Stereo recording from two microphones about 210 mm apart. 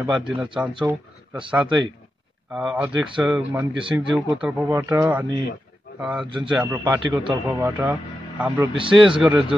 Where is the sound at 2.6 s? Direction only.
5° right (ahead or behind).